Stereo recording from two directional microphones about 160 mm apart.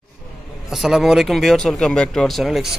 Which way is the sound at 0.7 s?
Centre (ahead or behind).